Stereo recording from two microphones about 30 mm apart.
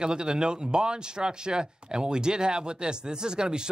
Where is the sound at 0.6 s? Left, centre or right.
Right.